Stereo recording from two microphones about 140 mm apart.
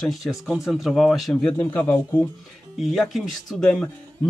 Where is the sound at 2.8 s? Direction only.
Centre (ahead or behind).